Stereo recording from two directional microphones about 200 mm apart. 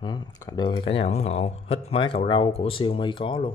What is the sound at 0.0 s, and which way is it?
Speech, 20° left (ahead or behind).